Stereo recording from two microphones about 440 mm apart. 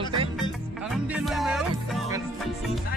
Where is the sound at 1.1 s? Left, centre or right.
Centre.